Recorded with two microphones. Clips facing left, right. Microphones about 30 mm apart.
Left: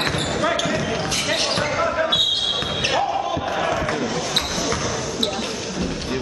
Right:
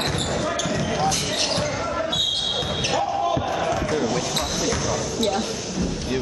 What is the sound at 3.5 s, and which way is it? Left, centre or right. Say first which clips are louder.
Battle cry: left 2 dB; left.